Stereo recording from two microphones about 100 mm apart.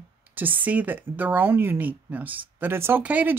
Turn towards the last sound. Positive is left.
turn(degrees=-15)  # may be behind; listen again after turning